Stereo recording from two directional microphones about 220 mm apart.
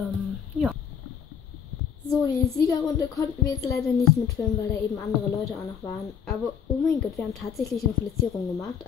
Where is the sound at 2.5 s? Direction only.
15° left (ahead or behind).